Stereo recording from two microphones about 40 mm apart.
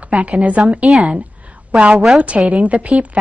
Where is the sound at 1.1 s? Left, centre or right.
Right.